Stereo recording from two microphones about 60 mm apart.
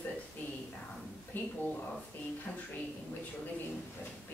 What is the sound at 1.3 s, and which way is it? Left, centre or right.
Speech, left.